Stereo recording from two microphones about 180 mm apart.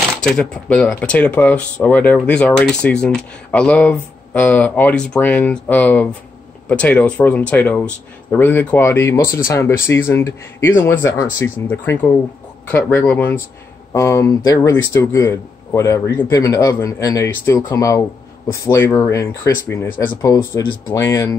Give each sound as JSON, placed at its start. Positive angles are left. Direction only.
{"t": 0.2, "sound": "speech", "side_deg": 5}